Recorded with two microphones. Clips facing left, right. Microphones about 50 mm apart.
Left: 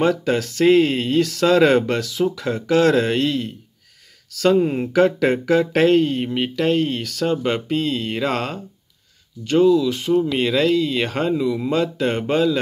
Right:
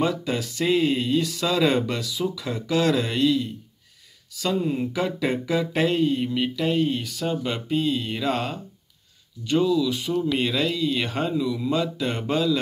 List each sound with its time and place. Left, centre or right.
0.0 s speech: left
6.2 s speech: left
6.5 s speech: left
7.4 s speech: left
11.3 s speech: left
11.7 s speech: left